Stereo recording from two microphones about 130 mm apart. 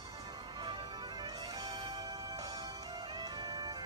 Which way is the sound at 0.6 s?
35° right (ahead or behind).